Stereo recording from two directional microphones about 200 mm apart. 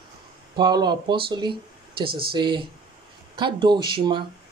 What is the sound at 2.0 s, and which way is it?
Speech, 50° right (ahead or behind).